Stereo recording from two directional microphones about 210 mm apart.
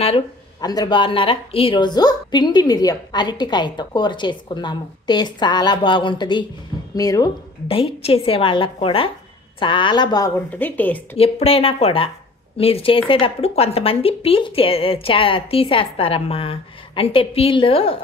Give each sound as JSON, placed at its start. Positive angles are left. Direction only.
{"t": 0.0, "sound": "speech", "side_deg": 25}
{"t": 11.1, "sound": "speech", "side_deg": 30}